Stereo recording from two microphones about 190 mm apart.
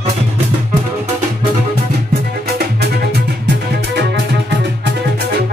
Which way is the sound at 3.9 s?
65° right (ahead or behind).